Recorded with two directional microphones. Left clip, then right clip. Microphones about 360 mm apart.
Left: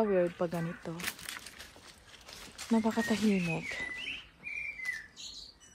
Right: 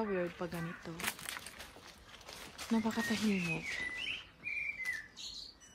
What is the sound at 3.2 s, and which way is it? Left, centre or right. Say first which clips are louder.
Speech: left 4 dB; centre.